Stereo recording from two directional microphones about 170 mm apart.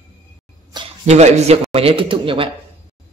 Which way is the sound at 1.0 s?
40° right (ahead or behind).